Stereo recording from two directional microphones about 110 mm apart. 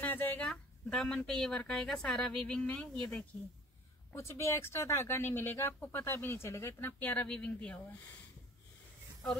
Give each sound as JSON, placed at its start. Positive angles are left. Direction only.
{"t": 0.0, "sound": "speech", "side_deg": 15}
{"t": 4.1, "sound": "speech", "side_deg": 25}